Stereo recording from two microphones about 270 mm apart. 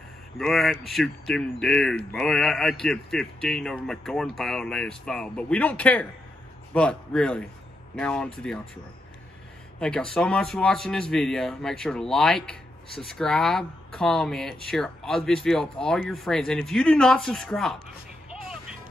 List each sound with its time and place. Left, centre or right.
0.4 s speech: centre
9.8 s speech: centre
18.3 s music: centre